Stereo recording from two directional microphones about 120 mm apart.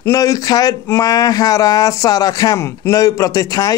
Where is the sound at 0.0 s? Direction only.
30° left (ahead or behind).